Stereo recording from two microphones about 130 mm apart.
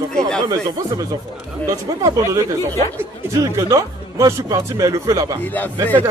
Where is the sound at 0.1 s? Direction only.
5° left (ahead or behind).